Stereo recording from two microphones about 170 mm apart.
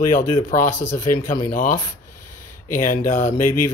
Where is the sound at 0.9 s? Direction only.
50° left (ahead or behind).